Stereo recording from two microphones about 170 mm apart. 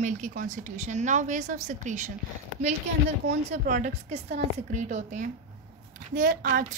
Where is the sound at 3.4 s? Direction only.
40° right (ahead or behind).